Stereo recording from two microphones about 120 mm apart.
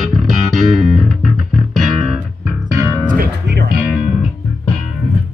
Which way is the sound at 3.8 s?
5° right (ahead or behind).